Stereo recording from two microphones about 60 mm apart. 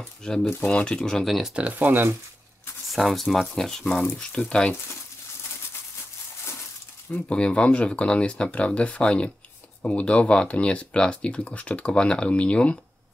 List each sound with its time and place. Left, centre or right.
0.0 s speech: centre
1.5 s speech: right
2.9 s speech: centre
7.1 s speech: centre